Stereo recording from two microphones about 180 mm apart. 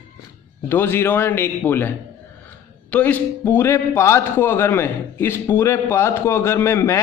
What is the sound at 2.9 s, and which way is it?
A man's voice, 10° left (ahead or behind).